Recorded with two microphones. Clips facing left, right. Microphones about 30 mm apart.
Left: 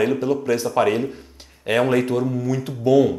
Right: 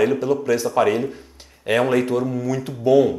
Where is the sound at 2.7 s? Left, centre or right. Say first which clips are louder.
Right 1 dB; centre.